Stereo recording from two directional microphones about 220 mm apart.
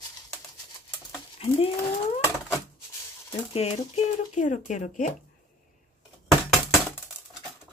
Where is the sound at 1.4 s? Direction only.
25° left (ahead or behind).